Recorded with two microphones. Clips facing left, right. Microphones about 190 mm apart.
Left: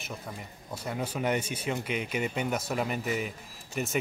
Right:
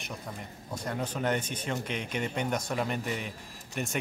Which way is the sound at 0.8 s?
10° left (ahead or behind).